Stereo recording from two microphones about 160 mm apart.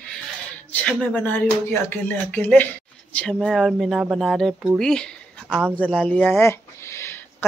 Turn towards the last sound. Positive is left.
turn(degrees=15)  # may be behind; listen again after turning